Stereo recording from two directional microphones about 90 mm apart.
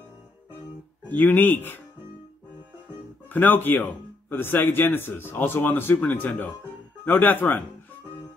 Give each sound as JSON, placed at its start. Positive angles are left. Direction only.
{"t": 1.0, "sound": "speech", "side_deg": 20}
{"t": 3.3, "sound": "speech", "side_deg": 20}